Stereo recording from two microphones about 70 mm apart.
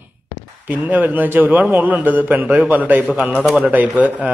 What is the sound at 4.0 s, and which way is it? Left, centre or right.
Speech, right.